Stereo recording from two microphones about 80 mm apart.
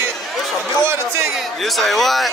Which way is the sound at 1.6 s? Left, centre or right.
Centre.